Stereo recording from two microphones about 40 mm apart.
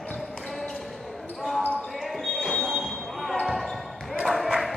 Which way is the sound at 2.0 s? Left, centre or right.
Centre.